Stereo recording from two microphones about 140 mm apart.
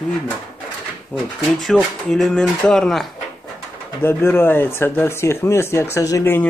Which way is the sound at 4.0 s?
15° left (ahead or behind).